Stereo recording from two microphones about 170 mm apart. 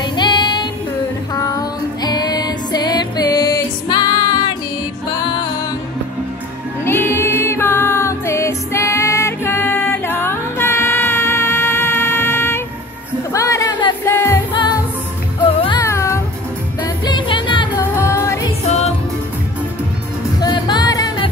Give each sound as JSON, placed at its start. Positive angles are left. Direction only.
{"t": 0.0, "sound": "female singing", "side_deg": 25}
{"t": 1.3, "sound": "music", "side_deg": 20}
{"t": 6.8, "sound": "music", "side_deg": 15}
{"t": 15.4, "sound": "music", "side_deg": 30}
{"t": 15.8, "sound": "music", "side_deg": 15}
{"t": 17.0, "sound": "music", "side_deg": 30}
{"t": 17.9, "sound": "music", "side_deg": 15}
{"t": 20.3, "sound": "music", "side_deg": 25}